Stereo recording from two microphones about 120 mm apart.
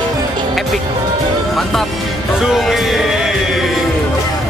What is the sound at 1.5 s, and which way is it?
Speech, centre (ahead or behind).